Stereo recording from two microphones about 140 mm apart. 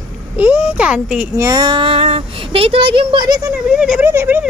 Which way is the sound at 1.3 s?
25° right (ahead or behind).